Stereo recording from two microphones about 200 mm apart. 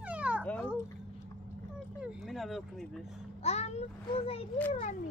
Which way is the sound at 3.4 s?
30° left (ahead or behind).